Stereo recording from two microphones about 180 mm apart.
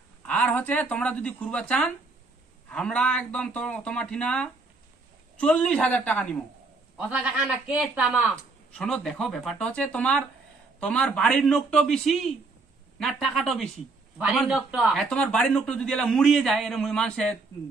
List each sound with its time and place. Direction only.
0.3 s a man's voice: 5° left (ahead or behind)
7.0 s a man's voice: 5° right (ahead or behind)